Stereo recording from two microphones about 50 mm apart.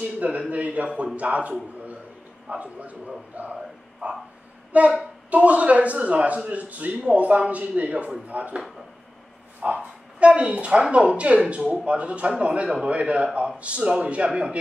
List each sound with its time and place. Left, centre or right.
0.0 s speech: right
2.5 s speech: right